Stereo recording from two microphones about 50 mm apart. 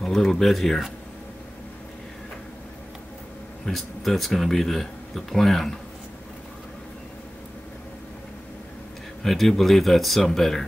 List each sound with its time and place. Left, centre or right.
0.0 s speech: centre
3.6 s speech: centre
9.2 s speech: centre